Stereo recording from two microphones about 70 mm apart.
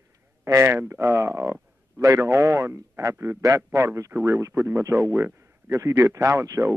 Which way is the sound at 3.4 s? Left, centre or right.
Right.